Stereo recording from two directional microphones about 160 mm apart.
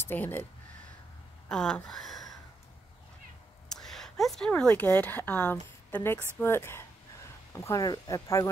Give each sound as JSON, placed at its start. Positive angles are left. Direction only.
{"t": 0.0, "sound": "speech", "side_deg": 10}
{"t": 1.5, "sound": "speech", "side_deg": 5}
{"t": 3.6, "sound": "a sound", "side_deg": 0}
{"t": 4.6, "sound": "a woman's voice", "side_deg": 15}